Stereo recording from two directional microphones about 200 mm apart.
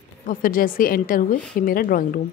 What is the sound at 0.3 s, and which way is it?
A woman's voice, 45° left (ahead or behind).